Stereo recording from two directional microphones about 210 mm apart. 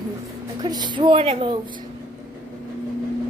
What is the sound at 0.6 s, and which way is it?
Speech, 20° right (ahead or behind).